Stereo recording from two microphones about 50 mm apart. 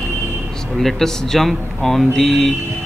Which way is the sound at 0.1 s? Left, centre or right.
Right.